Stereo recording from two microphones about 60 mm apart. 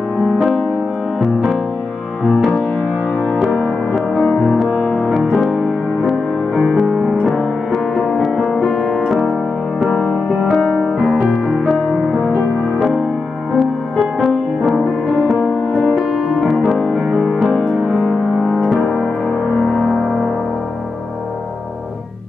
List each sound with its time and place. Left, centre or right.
0.2 s music: centre
6.9 s music: centre
7.2 s music: centre
10.5 s music: centre
15.4 s music: centre
17.1 s music: centre
17.4 s music: centre
17.9 s music: centre
18.7 s music: centre
19.9 s music: centre